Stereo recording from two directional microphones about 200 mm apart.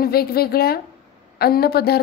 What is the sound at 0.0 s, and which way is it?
A woman's voice, 50° left (ahead or behind).